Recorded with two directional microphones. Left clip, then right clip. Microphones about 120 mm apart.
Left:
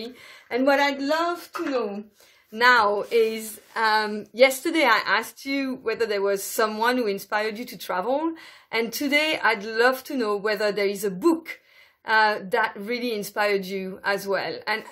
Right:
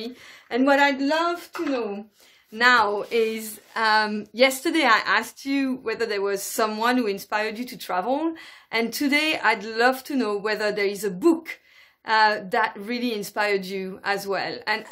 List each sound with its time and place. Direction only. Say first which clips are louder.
0.0 s speech: right 1 dB; 20° right (ahead or behind)
2.5 s speech: even; 20° right (ahead or behind)